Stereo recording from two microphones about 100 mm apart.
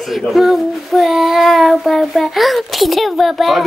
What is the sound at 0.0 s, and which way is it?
Speech, centre (ahead or behind).